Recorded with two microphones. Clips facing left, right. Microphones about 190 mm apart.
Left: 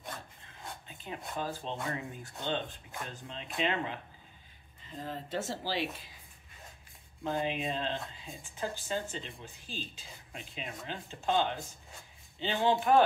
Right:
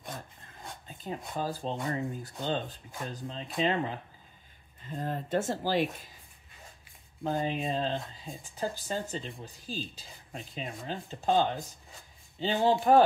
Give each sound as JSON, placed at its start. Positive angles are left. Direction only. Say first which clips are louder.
{"t": 0.8, "sound": "speech", "louder": "right 6 dB", "side_deg": -40}
{"t": 4.9, "sound": "speech", "louder": "right 6 dB", "side_deg": -50}
{"t": 7.2, "sound": "speech", "louder": "right 2 dB", "side_deg": -40}